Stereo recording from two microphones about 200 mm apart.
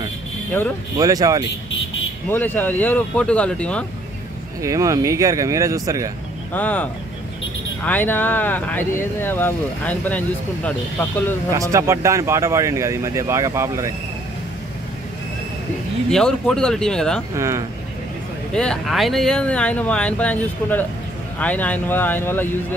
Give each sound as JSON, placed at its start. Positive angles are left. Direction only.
{"t": 0.5, "sound": "speech", "side_deg": 10}
{"t": 0.9, "sound": "speech", "side_deg": -15}
{"t": 2.2, "sound": "speech", "side_deg": 10}
{"t": 4.6, "sound": "speech", "side_deg": -15}
{"t": 6.5, "sound": "speech", "side_deg": 10}
{"t": 11.5, "sound": "speech", "side_deg": -15}
{"t": 16.1, "sound": "speech", "side_deg": 5}
{"t": 17.4, "sound": "speech", "side_deg": -15}
{"t": 18.5, "sound": "speech", "side_deg": 5}